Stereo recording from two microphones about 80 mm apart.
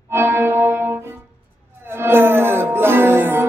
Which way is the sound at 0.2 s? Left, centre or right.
Right.